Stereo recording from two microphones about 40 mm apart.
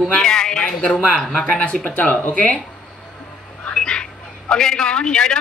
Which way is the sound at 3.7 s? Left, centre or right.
Left.